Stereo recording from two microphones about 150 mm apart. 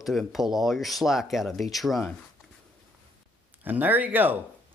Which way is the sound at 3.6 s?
10° right (ahead or behind).